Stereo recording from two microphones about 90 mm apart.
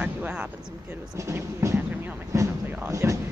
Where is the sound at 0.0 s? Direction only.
15° right (ahead or behind).